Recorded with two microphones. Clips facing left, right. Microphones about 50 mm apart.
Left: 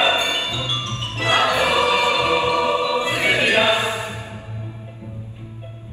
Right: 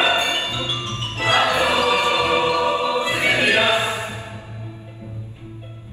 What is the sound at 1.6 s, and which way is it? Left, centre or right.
Music, left.